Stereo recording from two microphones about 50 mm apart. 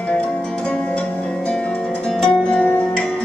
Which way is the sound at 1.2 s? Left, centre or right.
Centre.